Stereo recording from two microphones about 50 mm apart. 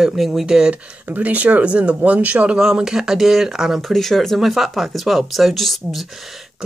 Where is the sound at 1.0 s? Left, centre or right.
Right.